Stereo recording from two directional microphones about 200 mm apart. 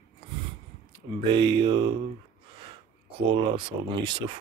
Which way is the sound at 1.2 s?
25° right (ahead or behind).